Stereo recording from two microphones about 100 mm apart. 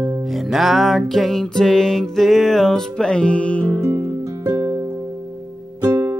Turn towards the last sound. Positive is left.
turn(degrees=-40)  # may be behind; listen again after turning